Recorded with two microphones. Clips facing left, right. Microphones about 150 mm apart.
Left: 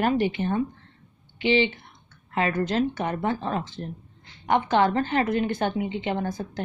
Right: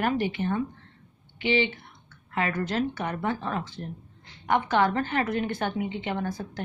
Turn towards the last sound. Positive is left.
turn(degrees=20)  # may be behind; listen again after turning